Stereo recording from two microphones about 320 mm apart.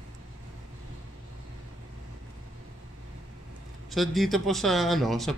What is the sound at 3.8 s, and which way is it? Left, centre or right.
Speech, centre.